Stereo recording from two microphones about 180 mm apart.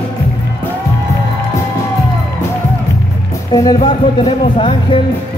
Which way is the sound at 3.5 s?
20° left (ahead or behind).